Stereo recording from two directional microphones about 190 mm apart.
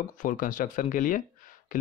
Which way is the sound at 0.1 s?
45° left (ahead or behind).